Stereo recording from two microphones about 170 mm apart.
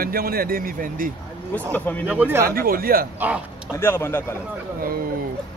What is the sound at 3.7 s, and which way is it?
Speech, 15° left (ahead or behind).